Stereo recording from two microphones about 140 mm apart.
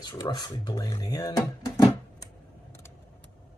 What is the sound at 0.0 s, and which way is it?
Speech, 30° left (ahead or behind).